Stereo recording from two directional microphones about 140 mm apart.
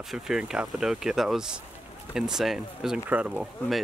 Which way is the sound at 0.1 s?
5° right (ahead or behind).